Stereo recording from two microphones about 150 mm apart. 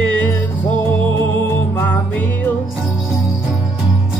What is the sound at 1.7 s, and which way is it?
Music, 10° left (ahead or behind).